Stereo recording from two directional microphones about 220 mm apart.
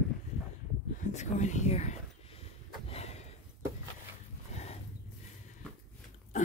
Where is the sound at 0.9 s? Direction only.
35° left (ahead or behind).